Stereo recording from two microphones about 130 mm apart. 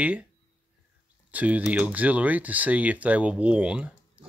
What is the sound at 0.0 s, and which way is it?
Speech, 10° right (ahead or behind).